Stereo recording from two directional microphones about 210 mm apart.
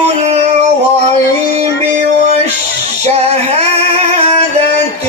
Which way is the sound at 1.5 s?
30° right (ahead or behind).